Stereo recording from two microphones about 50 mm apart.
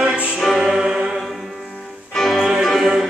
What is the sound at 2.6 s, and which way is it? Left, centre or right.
Music, centre.